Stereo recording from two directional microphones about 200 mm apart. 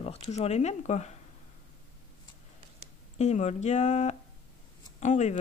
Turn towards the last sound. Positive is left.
turn(degrees=35)  # may be behind; listen again after turning